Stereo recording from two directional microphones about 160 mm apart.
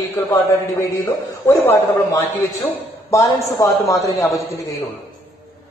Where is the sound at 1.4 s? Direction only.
15° left (ahead or behind).